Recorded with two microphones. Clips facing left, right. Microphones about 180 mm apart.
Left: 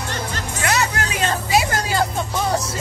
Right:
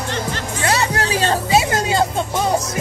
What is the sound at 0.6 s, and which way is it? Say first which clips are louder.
Music: right 2 dB; 30° right (ahead or behind).